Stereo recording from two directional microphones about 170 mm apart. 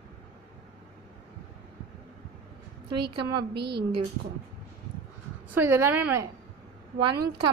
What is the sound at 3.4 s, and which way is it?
Speech, 75° right (ahead or behind).